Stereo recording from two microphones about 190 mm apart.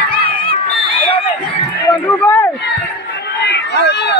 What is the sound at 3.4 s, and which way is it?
Run, 65° left (ahead or behind).